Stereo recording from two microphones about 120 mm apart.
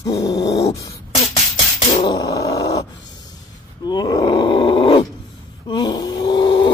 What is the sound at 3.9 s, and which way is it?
Groan, 35° left (ahead or behind).